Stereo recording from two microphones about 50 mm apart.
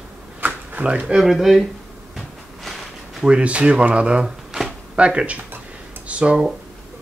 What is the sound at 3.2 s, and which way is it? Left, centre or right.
Speech, right.